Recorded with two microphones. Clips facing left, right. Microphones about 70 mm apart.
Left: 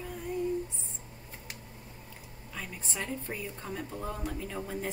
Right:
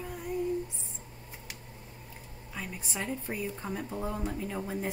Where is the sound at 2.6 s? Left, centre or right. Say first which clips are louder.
Right 1 dB; centre.